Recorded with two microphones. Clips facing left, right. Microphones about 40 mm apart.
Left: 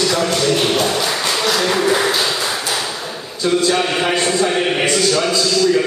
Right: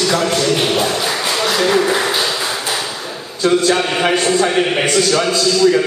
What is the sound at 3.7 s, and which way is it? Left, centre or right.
A man's voice, centre.